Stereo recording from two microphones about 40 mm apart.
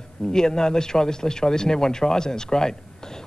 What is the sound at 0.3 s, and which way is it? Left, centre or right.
Speech, centre.